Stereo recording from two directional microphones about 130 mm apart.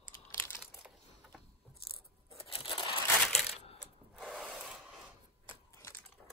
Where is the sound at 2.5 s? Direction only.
40° left (ahead or behind).